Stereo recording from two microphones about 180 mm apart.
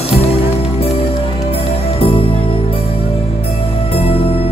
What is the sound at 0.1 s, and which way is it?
Music, 35° left (ahead or behind).